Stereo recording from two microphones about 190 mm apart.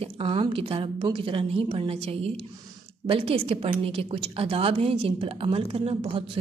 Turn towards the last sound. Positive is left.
turn(degrees=-30)  # may be behind; listen again after turning